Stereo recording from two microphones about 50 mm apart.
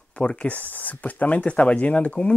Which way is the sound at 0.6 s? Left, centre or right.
Left.